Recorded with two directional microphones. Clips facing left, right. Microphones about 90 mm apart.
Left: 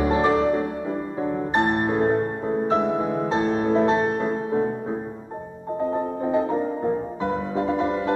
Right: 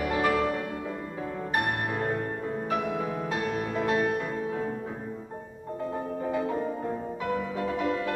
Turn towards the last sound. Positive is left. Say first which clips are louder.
# left 6 dB
turn(degrees=25)  # may be behind; listen again after turning